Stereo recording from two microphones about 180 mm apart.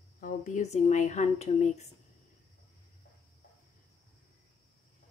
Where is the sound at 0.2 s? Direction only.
45° left (ahead or behind).